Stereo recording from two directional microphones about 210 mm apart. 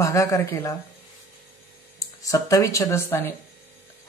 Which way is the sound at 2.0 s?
15° left (ahead or behind).